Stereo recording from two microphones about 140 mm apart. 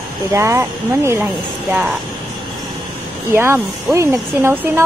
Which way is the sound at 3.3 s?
15° right (ahead or behind).